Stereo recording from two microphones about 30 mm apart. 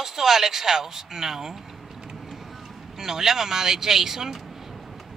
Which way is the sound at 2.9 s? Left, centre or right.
Centre.